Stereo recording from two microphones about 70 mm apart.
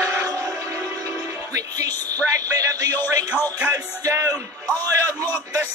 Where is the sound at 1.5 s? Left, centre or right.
Right.